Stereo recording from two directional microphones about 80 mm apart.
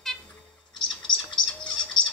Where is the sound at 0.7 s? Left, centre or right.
Centre.